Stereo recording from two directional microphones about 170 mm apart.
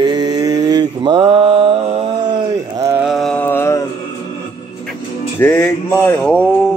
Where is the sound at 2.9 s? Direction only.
5° right (ahead or behind); by 3.8 s 15° left (ahead or behind).